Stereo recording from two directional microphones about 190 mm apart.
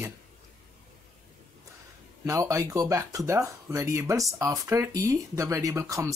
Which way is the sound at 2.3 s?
15° right (ahead or behind).